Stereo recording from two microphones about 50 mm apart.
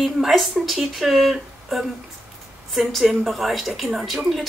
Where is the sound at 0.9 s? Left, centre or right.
Centre.